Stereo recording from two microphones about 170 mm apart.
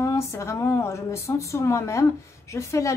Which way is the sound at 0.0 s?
15° left (ahead or behind).